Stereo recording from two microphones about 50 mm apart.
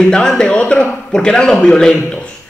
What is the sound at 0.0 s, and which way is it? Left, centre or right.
A man's voice, centre.